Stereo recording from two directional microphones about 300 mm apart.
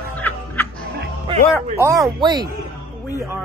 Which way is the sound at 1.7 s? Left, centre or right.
Centre.